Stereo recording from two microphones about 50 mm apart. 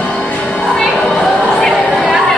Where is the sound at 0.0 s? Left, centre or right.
Left.